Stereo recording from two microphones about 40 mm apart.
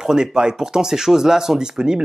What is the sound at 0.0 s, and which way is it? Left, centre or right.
Speech, centre.